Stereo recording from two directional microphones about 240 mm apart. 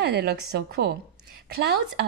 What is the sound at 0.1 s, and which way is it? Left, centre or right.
Speech, right.